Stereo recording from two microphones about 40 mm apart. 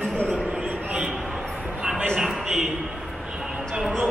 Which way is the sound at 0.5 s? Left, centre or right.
Right.